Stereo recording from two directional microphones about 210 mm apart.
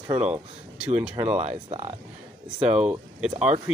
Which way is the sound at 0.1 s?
5° right (ahead or behind).